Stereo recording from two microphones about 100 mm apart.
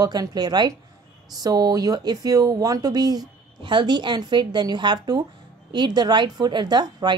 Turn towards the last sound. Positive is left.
turn(degrees=-45)  # may be behind; listen again after turning